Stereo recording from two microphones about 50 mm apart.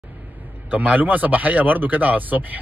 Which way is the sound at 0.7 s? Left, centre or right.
Right.